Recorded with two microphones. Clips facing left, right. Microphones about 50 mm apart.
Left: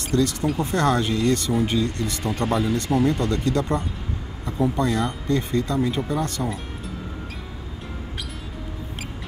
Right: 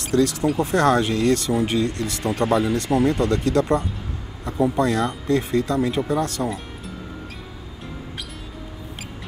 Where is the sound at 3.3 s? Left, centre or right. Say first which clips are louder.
Right 3 dB; right.